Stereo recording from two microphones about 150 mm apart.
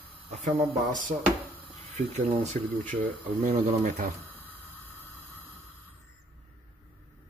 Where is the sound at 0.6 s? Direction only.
60° right (ahead or behind).